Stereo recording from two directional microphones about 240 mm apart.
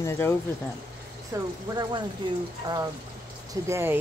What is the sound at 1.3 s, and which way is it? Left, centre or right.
Speech, centre.